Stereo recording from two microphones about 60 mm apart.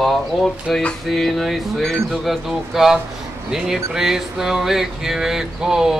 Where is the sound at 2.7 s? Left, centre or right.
Centre.